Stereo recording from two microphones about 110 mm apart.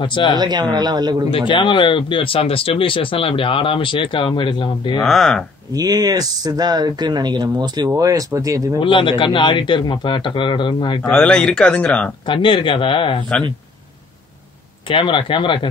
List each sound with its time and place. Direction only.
0.0 s speech: 45° left (ahead or behind)
0.4 s speech: 40° right (ahead or behind)
1.5 s speech: 50° left (ahead or behind)
5.0 s speech: centre (ahead or behind)
5.7 s speech: 35° right (ahead or behind)
8.7 s speech: 50° left (ahead or behind)
11.0 s speech: 10° left (ahead or behind)
12.3 s speech: 50° left (ahead or behind)
14.9 s speech: 50° left (ahead or behind)